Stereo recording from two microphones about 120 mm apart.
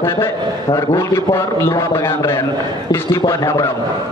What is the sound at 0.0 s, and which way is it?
A man's voice, 20° left (ahead or behind).